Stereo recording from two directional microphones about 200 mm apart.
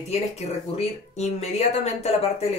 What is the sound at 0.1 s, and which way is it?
Speech, 35° left (ahead or behind).